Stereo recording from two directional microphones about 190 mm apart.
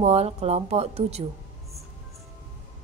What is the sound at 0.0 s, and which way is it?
Speech, 35° right (ahead or behind).